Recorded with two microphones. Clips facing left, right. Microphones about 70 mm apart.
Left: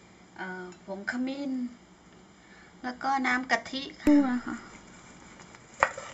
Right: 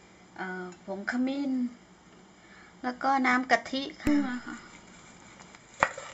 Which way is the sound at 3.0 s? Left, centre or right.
Centre.